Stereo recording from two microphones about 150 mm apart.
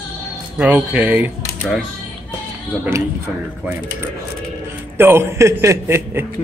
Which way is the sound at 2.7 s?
15° right (ahead or behind).